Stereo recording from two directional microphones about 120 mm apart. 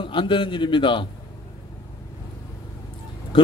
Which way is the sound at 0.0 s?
45° left (ahead or behind).